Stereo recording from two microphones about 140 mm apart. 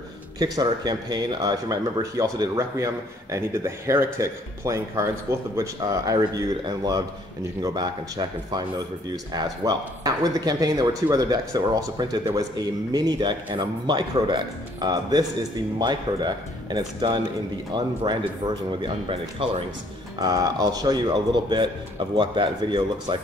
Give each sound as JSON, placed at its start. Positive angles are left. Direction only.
{"t": 0.4, "sound": "a man's voice", "side_deg": -30}
{"t": 20.2, "sound": "a man's voice", "side_deg": -25}